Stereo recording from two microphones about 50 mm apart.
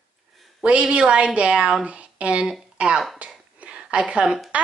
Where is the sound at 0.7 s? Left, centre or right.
Right.